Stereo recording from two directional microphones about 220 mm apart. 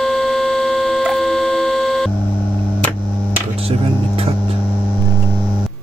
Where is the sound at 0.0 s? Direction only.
Centre (ahead or behind).